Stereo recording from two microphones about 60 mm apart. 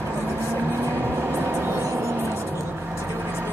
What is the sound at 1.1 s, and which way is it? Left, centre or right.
Vehicle, right.